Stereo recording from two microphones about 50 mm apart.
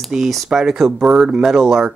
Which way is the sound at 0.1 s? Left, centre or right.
Centre.